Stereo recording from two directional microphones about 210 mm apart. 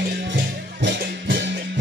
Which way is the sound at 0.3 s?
60° right (ahead or behind).